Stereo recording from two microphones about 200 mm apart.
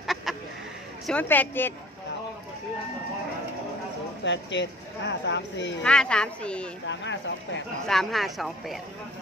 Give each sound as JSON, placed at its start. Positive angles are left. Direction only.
{"t": 0.0, "sound": "chicken", "side_deg": 0}
{"t": 1.0, "sound": "a woman's voice", "side_deg": 10}
{"t": 4.2, "sound": "speech", "side_deg": 65}
{"t": 5.8, "sound": "speech", "side_deg": 5}
{"t": 6.9, "sound": "speech", "side_deg": 65}
{"t": 7.8, "sound": "speech", "side_deg": 0}